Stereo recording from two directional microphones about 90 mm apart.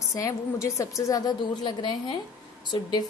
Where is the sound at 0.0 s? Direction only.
35° left (ahead or behind).